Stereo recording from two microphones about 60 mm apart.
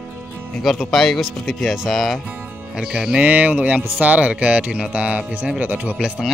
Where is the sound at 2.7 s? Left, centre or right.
Centre.